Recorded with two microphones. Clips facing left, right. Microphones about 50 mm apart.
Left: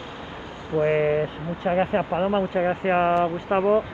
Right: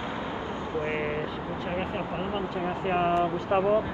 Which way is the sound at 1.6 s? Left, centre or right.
Left.